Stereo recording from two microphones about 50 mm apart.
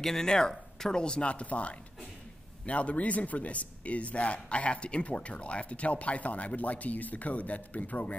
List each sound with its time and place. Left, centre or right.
0.0 s a man's voice: centre; by 8.2 s left